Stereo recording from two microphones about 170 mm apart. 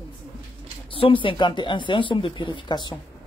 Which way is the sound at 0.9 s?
30° left (ahead or behind).